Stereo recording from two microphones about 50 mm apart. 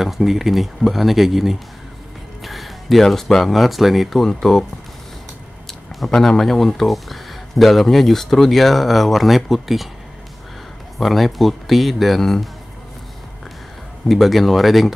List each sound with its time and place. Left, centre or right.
0.0 s speech: centre
5.7 s speech: centre
11.0 s speech: centre
14.0 s speech: centre